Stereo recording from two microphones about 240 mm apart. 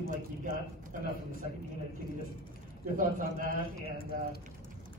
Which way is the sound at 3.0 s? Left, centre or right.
Right.